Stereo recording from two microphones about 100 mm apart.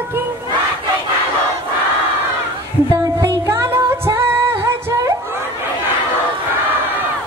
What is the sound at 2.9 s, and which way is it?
Music, 25° right (ahead or behind).